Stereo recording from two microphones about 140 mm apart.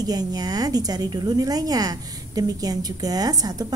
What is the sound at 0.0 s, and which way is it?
A woman's voice, 30° right (ahead or behind).